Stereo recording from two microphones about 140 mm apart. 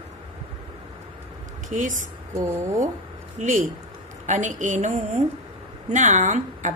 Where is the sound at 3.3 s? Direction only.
65° right (ahead or behind).